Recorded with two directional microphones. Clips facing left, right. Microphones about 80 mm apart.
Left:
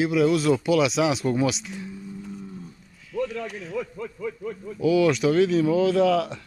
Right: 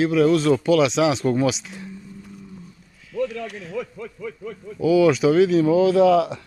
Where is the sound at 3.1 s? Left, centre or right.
Centre.